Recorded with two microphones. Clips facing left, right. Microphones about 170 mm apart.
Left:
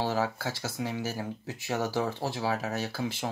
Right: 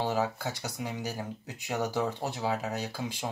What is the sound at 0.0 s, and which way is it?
Speech, 20° right (ahead or behind).